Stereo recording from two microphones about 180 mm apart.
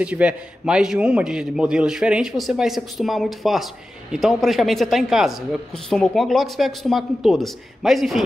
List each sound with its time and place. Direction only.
0.0 s a man's voice: 5° right (ahead or behind)